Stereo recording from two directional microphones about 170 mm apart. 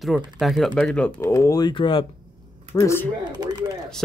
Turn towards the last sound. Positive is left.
turn(degrees=-25)  # may be behind; listen again after turning